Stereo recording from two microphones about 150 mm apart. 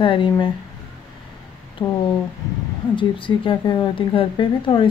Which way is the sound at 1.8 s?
20° left (ahead or behind).